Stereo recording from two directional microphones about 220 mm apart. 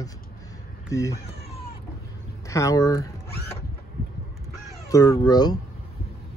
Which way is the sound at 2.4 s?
15° left (ahead or behind).